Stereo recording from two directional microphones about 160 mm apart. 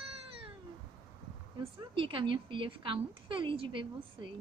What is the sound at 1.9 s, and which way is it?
A woman's voice, 30° right (ahead or behind).